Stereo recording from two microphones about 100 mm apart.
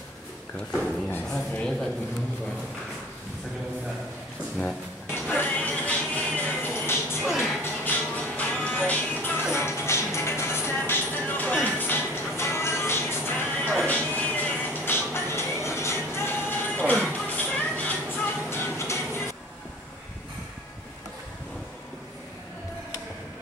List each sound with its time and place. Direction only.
1.5 s speech: 5° left (ahead or behind)
5.1 s music: 20° left (ahead or behind)
7.2 s music: 5° right (ahead or behind)
7.6 s music: 20° left (ahead or behind)